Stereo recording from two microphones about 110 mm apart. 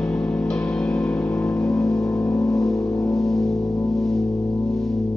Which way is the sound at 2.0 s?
25° left (ahead or behind).